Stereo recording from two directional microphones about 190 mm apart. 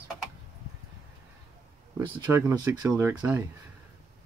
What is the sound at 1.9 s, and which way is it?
Speech, 15° right (ahead or behind).